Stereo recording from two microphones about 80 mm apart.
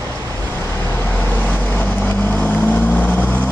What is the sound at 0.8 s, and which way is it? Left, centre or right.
Vehicle, left.